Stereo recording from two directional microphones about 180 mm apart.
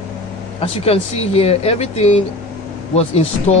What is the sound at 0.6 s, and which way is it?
Speech, 35° left (ahead or behind).